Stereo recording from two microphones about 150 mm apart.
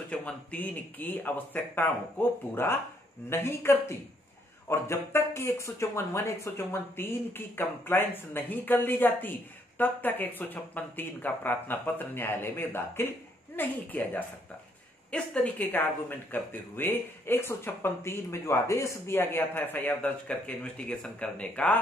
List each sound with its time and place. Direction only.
0.1 s speech: 10° left (ahead or behind)